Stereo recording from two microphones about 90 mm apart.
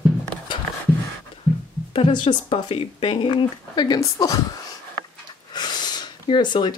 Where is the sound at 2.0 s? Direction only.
75° left (ahead or behind); by 4.0 s 55° left (ahead or behind).